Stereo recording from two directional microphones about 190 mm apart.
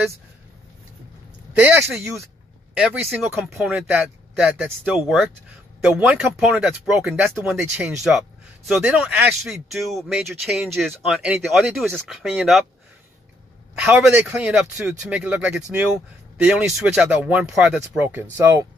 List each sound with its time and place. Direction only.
1.5 s speech: 10° right (ahead or behind)
13.7 s speech: 10° right (ahead or behind)